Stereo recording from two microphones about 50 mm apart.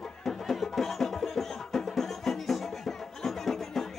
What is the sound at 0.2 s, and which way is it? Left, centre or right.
Music, centre.